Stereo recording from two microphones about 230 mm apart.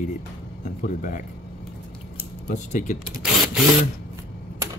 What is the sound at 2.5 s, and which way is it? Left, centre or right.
Speech, left.